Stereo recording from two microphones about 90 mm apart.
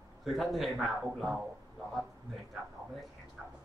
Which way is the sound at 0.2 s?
Centre (ahead or behind).